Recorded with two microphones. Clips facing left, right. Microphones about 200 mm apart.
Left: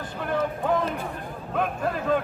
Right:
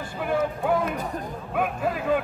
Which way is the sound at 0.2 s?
10° right (ahead or behind).